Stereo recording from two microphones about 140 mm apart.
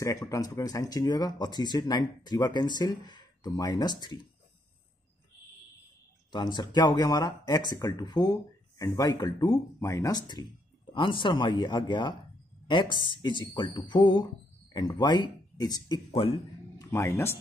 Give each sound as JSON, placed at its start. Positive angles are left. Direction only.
{"t": 0.3, "sound": "speech", "side_deg": 25}
{"t": 6.3, "sound": "speech", "side_deg": 30}
{"t": 16.7, "sound": "speech", "side_deg": 20}